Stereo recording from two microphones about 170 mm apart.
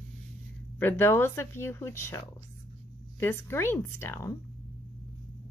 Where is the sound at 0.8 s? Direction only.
10° left (ahead or behind).